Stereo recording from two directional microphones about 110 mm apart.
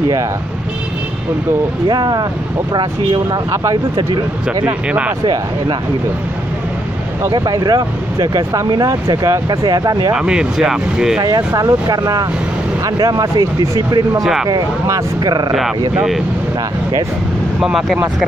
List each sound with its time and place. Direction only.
1.9 s speech: 40° right (ahead or behind)
4.6 s speech: 10° right (ahead or behind)
5.2 s speech: 45° right (ahead or behind)
7.3 s speech: 35° right (ahead or behind)
10.1 s speech: 5° right (ahead or behind)
11.1 s speech: 40° right (ahead or behind)
14.2 s speech: 5° right (ahead or behind)
14.5 s speech: 35° right (ahead or behind)
17.6 s speech: 5° right (ahead or behind)